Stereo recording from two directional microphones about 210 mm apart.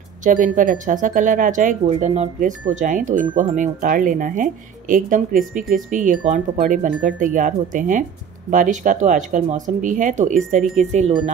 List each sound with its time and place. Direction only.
0.2 s speech: 40° right (ahead or behind)